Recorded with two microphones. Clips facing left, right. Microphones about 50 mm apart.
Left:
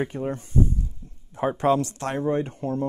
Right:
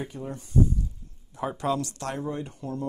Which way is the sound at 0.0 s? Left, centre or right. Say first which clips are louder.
Left 7 dB; left.